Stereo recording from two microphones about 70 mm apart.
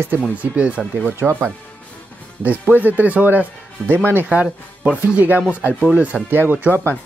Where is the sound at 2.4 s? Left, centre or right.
Right.